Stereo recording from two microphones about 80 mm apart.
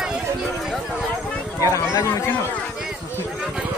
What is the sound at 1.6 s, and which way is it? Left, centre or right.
Speech, left.